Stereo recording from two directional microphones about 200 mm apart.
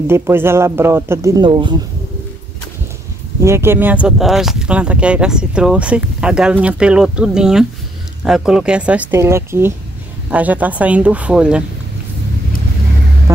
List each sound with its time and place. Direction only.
0.1 s speech: 10° right (ahead or behind)
3.3 s speech: 15° right (ahead or behind)